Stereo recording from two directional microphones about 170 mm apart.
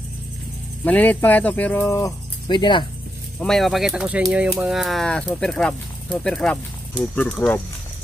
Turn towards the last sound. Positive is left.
turn(degrees=5)  # may be behind; listen again after turning